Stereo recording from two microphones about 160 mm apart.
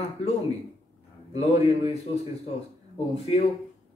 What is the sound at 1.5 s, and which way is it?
Speech, 40° left (ahead or behind).